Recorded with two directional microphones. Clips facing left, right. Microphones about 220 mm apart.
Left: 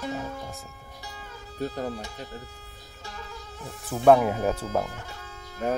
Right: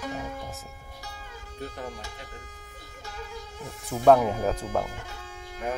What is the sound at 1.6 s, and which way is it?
Speech, 40° left (ahead or behind).